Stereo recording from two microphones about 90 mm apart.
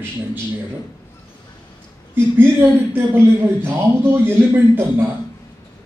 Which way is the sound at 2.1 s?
25° right (ahead or behind).